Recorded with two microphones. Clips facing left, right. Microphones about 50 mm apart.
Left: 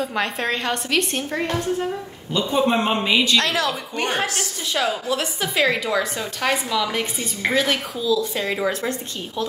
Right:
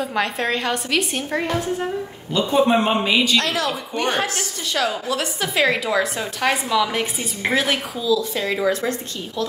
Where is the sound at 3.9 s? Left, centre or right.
Right.